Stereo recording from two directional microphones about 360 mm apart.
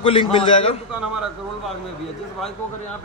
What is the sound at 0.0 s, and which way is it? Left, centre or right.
Speech, centre.